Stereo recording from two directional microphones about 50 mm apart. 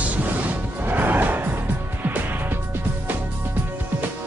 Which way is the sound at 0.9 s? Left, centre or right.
Right.